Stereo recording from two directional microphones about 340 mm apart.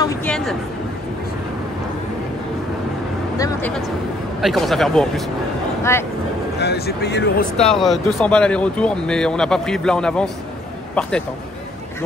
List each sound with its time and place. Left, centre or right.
0.0 s speech: centre
3.3 s a sound: centre
4.4 s speech: centre
6.6 s speech: left
7.6 s speech: centre